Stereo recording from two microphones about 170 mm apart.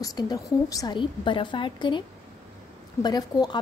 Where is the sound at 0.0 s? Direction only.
20° left (ahead or behind).